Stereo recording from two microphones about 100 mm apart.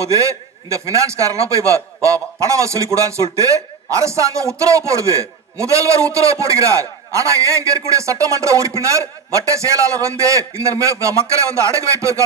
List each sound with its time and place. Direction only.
0.0 s a man's voice: 30° right (ahead or behind)